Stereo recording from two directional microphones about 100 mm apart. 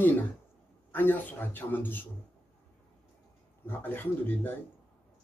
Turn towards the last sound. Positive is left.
turn(degrees=20)  # may be behind; listen again after turning